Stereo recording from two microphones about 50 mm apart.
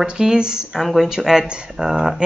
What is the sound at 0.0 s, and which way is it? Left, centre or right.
Speech, centre.